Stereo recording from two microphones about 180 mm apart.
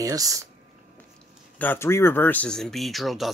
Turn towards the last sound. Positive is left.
turn(degrees=0)  # may be behind; listen again after turning